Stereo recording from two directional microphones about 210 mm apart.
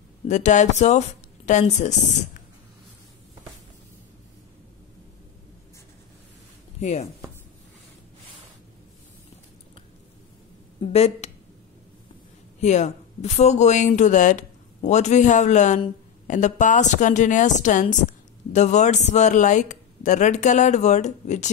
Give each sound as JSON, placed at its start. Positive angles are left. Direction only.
{"t": 0.3, "sound": "speech", "side_deg": 35}
{"t": 6.8, "sound": "speech", "side_deg": 30}
{"t": 10.8, "sound": "speech", "side_deg": 30}
{"t": 12.5, "sound": "speech", "side_deg": 35}